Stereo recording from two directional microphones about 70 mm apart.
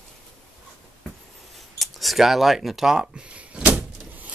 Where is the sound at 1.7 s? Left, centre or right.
Centre.